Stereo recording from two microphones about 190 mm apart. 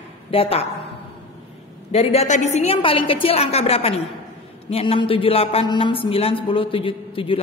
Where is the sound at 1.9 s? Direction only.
30° left (ahead or behind).